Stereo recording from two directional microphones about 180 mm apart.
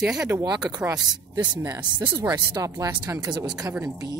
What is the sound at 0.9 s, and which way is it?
A woman's voice, 20° right (ahead or behind).